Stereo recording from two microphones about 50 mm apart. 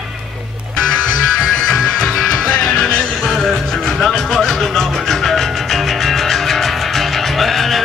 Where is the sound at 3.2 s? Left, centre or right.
Centre.